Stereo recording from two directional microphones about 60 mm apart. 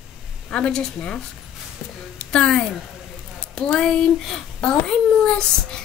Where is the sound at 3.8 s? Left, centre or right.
Centre.